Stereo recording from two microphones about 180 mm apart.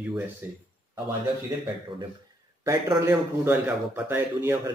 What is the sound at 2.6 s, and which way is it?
Speech, 15° right (ahead or behind).